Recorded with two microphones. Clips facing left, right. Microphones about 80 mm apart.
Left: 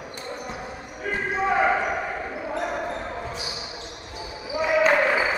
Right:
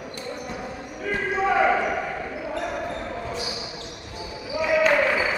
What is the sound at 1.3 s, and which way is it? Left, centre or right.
Basketball bounce, centre.